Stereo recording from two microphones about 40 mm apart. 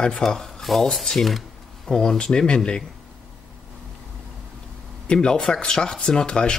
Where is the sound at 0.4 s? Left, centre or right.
Centre.